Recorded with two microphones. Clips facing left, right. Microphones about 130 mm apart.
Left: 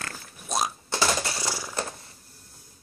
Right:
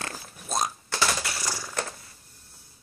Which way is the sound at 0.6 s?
20° left (ahead or behind).